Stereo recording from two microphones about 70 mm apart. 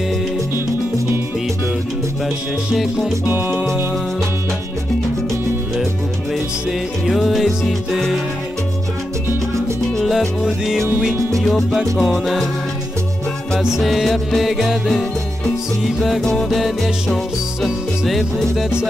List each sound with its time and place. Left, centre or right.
2.7 s music: centre
3.3 s music: right
7.1 s music: centre
10.0 s music: centre
13.6 s music: centre
16.4 s music: centre